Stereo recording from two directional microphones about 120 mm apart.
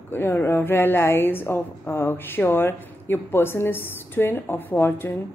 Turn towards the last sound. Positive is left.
turn(degrees=15)  # may be behind; listen again after turning